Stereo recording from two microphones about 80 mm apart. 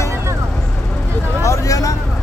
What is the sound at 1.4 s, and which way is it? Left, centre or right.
Speech, left.